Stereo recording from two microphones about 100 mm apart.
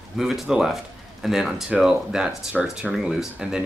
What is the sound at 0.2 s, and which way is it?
Speech, 5° right (ahead or behind).